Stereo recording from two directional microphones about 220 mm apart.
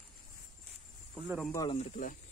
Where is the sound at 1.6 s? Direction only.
30° left (ahead or behind).